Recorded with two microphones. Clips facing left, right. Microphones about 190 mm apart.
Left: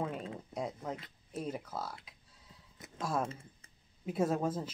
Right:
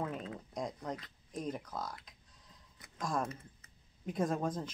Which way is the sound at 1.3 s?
5° left (ahead or behind).